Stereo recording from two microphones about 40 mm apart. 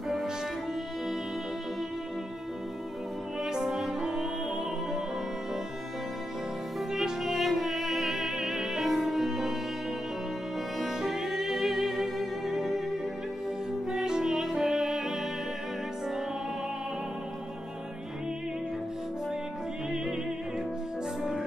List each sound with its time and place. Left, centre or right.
3.3 s music: centre
6.9 s music: centre
10.9 s music: centre
13.8 s music: centre